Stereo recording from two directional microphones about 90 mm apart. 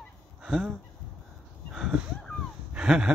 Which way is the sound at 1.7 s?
5° right (ahead or behind).